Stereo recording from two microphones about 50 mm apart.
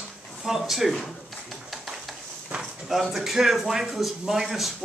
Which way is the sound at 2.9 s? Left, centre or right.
Centre.